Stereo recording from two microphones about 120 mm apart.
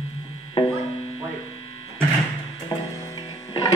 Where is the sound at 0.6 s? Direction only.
50° left (ahead or behind).